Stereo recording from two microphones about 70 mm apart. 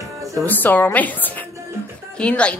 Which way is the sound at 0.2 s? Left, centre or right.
Right.